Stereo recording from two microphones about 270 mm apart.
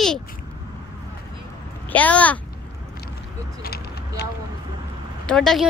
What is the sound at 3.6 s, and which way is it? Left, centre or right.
Vehicle, left.